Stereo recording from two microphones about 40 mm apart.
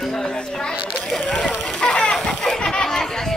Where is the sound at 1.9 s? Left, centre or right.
Left.